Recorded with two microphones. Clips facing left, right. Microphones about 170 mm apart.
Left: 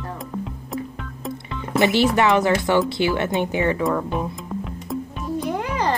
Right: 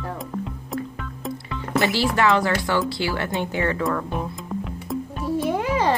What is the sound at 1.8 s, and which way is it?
Speech, 20° left (ahead or behind).